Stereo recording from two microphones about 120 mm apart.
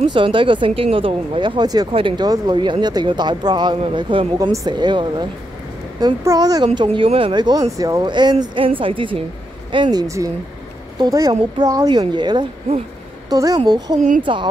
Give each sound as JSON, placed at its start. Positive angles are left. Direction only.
{"t": 0.1, "sound": "speech", "side_deg": -45}
{"t": 1.9, "sound": "speech", "side_deg": -50}
{"t": 2.1, "sound": "speech", "side_deg": -35}
{"t": 4.4, "sound": "speech", "side_deg": -35}
{"t": 6.2, "sound": "a woman's voice", "side_deg": -30}